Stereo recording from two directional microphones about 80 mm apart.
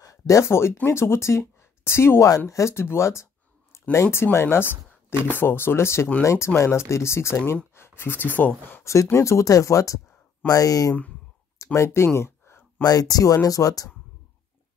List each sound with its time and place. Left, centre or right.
0.0 s speech: left
8.8 s speech: left
12.2 s a sound: left
12.8 s speech: left